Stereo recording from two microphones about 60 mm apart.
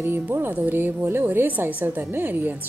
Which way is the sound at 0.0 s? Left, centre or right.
Right.